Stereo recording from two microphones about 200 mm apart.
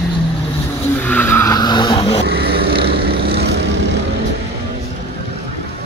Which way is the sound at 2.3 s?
50° right (ahead or behind).